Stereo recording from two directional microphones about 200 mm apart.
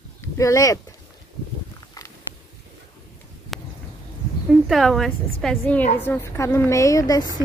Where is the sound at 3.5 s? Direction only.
Centre (ahead or behind).